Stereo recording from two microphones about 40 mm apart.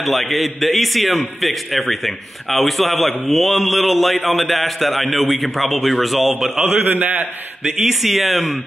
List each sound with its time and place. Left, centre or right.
0.0 s a man's voice: centre
6.7 s a man's voice: right
7.6 s a man's voice: centre